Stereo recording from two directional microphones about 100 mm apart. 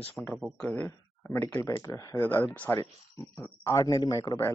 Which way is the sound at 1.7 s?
35° left (ahead or behind).